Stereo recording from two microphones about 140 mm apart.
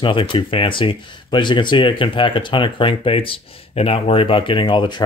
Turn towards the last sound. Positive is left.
turn(degrees=35)  # may be behind; listen again after turning